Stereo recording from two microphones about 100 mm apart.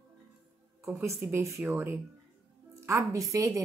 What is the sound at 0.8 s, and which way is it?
A woman's voice, 30° right (ahead or behind).